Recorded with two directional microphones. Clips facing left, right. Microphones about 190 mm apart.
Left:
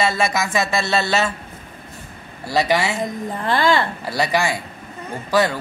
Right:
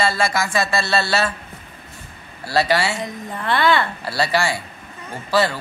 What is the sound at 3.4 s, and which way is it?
Speech, 40° left (ahead or behind).